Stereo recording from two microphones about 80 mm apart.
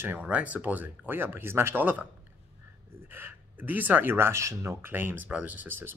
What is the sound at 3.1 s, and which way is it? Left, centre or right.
Speech, right.